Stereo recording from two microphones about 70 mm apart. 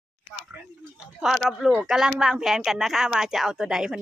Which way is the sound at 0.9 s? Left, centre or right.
Centre.